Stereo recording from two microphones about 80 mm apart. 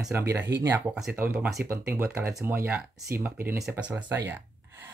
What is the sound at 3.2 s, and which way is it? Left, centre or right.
Speech, right.